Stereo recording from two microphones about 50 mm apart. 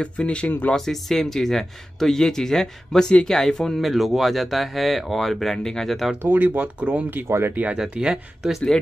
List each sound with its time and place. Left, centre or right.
0.0 s speech: left
0.7 s speech: centre
3.8 s speech: centre
6.2 s speech: right
7.2 s speech: right
7.7 s speech: centre